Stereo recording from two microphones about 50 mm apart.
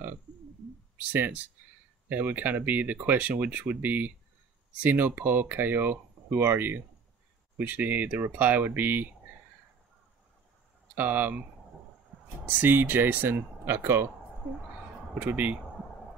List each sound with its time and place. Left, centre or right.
0.9 s speech: right
7.5 s speech: right
11.0 s speech: right
12.4 s speech: right
13.7 s speech: right
15.1 s speech: right